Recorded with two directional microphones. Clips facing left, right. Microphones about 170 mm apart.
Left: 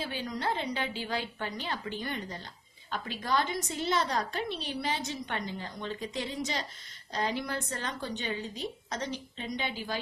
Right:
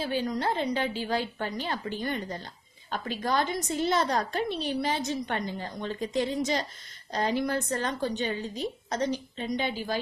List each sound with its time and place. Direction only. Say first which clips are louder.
0.0 s a woman's voice: right 5 dB; 40° right (ahead or behind)